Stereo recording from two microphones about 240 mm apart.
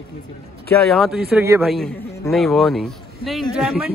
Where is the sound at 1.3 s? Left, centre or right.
Centre.